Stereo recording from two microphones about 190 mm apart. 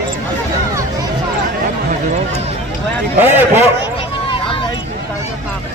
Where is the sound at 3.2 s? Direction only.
10° right (ahead or behind).